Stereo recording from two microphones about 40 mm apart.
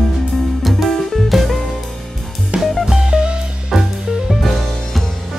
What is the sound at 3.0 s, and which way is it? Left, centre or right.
Music, right.